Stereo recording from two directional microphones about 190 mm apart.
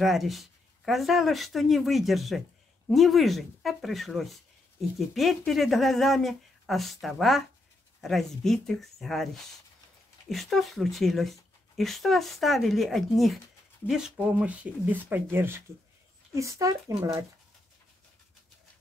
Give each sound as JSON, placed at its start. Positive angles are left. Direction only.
{"t": 0.0, "sound": "speech", "side_deg": 0}